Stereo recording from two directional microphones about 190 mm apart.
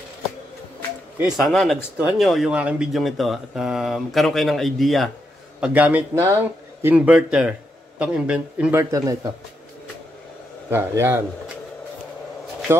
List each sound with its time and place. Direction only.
1.2 s a man's voice: centre (ahead or behind); by 9.3 s 20° right (ahead or behind)
10.7 s a man's voice: 10° right (ahead or behind)